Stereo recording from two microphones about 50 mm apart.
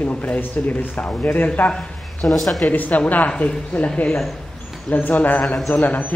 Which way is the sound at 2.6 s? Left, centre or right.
Left.